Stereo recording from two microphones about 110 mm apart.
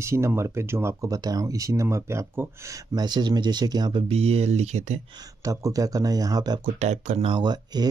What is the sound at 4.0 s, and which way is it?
Speech, 70° right (ahead or behind).